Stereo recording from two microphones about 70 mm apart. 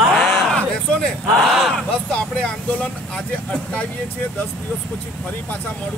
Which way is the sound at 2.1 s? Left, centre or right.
Centre.